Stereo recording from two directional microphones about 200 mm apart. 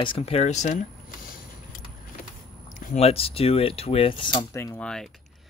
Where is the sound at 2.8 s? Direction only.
35° left (ahead or behind); by 5.0 s 5° left (ahead or behind).